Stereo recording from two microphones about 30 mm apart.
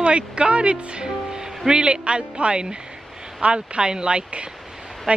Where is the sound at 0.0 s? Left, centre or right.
Right.